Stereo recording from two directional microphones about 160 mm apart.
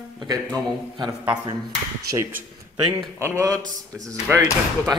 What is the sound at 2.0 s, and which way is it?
Speech, 20° right (ahead or behind).